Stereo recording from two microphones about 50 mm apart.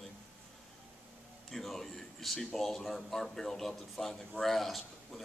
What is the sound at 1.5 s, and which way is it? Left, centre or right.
Speech, centre.